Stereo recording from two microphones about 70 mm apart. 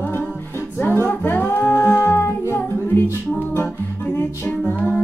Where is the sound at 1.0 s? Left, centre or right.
Left.